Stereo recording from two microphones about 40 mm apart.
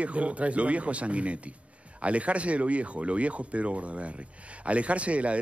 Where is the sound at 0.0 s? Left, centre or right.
Right.